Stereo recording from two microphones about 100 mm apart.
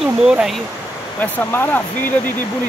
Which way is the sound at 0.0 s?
5° right (ahead or behind).